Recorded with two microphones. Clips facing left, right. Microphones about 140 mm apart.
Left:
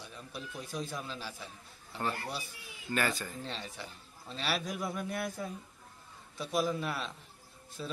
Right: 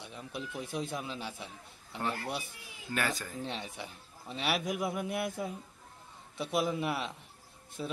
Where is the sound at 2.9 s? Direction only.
Centre (ahead or behind).